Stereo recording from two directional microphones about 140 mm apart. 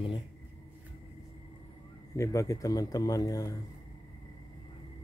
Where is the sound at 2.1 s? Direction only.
20° left (ahead or behind).